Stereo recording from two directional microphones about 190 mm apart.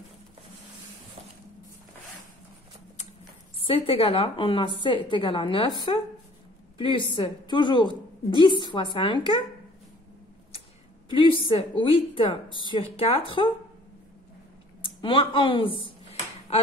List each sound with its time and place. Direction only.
3.5 s a woman's voice: 30° left (ahead or behind)
11.1 s a woman's voice: 25° left (ahead or behind)
15.0 s a woman's voice: 25° left (ahead or behind)